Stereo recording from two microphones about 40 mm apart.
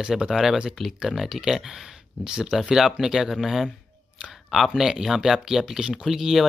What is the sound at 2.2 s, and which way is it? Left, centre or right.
Speech, centre.